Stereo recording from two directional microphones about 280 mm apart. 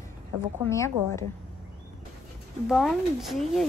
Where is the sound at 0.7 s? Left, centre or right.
Centre.